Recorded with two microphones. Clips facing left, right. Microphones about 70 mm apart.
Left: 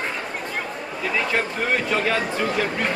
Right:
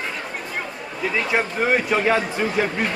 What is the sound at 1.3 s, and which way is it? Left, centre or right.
A man's voice, centre.